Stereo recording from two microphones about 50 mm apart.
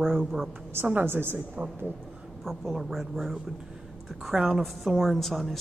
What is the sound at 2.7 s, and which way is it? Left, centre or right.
Speech, centre.